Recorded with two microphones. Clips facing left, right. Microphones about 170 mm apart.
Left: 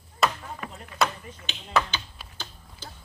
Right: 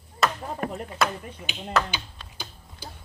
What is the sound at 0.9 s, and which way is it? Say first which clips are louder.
Speech: left 3 dB; 10° right (ahead or behind).